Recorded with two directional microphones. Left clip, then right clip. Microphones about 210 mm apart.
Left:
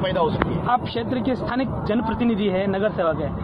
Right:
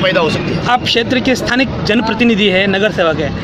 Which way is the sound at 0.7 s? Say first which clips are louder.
Right 12 dB; 75° right (ahead or behind).